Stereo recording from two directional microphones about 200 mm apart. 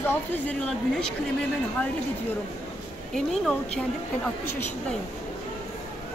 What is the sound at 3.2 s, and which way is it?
Speech, centre (ahead or behind).